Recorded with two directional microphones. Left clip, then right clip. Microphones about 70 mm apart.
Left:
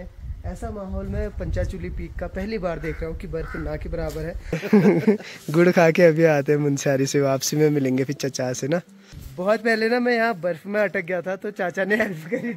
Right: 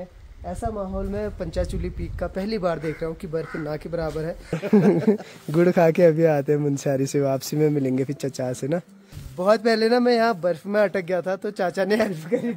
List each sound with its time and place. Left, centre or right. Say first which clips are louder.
0.6 s speech: right 4 dB; right
2.3 s speech: right 2 dB; right
4.6 s speech: left 1 dB; centre
4.9 s speech: left 1 dB; centre
9.4 s a man's voice: right 2 dB; right